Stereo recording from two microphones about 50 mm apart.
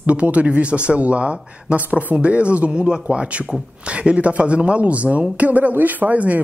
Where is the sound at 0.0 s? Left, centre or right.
Right.